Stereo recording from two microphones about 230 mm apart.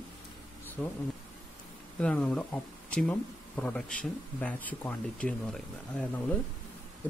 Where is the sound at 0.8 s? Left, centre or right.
Centre.